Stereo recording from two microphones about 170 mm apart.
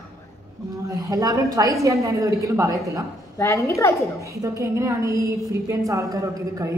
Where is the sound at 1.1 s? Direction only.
20° right (ahead or behind).